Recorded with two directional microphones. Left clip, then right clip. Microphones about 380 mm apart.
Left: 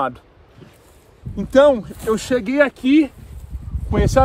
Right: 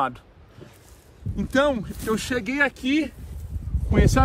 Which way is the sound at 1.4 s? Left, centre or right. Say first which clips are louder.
Left 9 dB; centre.